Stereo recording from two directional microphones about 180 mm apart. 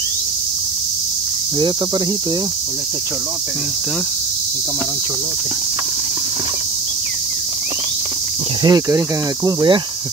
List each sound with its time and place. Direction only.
8.6 s speech: 20° right (ahead or behind)